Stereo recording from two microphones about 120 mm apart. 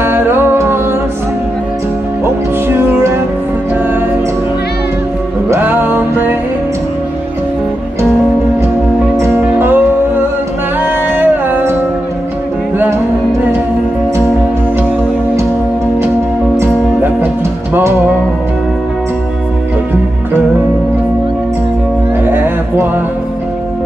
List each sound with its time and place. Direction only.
0.0 s music: 20° right (ahead or behind)
2.7 s music: 20° right (ahead or behind)
5.5 s music: 15° right (ahead or behind)
9.2 s music: 20° right (ahead or behind)
16.5 s music: 20° right (ahead or behind)
22.2 s music: 15° right (ahead or behind)